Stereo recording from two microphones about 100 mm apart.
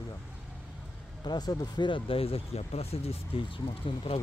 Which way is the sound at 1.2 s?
45° left (ahead or behind).